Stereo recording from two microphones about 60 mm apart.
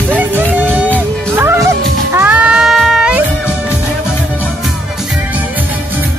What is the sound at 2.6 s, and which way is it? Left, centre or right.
Music, centre.